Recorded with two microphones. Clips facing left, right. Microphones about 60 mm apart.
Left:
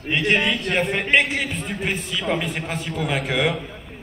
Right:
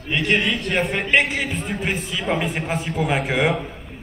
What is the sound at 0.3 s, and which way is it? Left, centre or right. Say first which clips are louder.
A man's voice: even; centre.